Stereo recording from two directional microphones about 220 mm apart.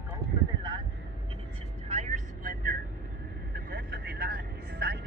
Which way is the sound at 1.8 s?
30° right (ahead or behind).